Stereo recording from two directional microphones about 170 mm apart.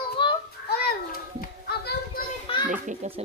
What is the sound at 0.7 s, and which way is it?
Children playing, 65° left (ahead or behind).